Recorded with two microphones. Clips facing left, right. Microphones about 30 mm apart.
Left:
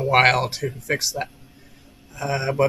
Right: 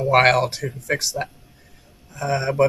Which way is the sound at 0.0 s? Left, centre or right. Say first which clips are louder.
Right 1 dB; centre.